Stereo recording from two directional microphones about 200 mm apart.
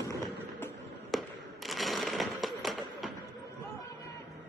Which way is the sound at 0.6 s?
Centre (ahead or behind).